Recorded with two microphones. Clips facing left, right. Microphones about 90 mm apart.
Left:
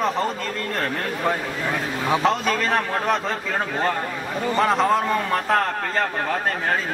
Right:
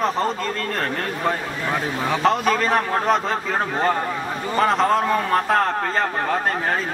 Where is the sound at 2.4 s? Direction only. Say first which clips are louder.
Right 3 dB; 25° right (ahead or behind).